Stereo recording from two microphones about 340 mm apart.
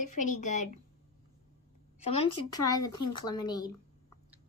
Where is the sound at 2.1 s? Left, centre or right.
Centre.